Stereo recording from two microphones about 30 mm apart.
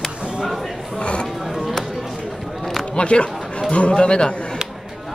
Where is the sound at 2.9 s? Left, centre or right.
Left.